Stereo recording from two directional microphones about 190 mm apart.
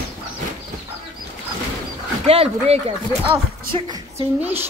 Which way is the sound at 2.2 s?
30° right (ahead or behind).